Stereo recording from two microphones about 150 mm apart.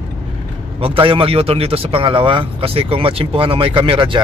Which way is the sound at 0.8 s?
35° right (ahead or behind).